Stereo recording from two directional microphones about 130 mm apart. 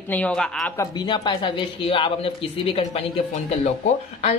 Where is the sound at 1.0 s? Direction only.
35° left (ahead or behind).